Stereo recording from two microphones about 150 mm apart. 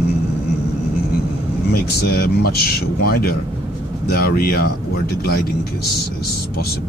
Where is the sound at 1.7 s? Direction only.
90° left.